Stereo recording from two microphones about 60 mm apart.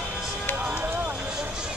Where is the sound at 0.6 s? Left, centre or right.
Right.